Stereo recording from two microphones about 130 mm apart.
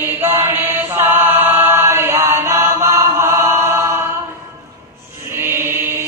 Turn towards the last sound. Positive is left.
turn(degrees=-15)  # may be behind; listen again after turning